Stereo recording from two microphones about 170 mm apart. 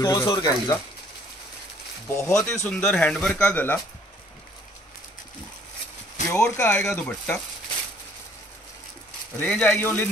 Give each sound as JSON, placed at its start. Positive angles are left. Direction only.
{"t": 0.0, "sound": "speech", "side_deg": 20}
{"t": 2.0, "sound": "speech", "side_deg": 15}
{"t": 2.6, "sound": "speech", "side_deg": 5}
{"t": 6.2, "sound": "speech", "side_deg": 15}
{"t": 9.4, "sound": "speech", "side_deg": 10}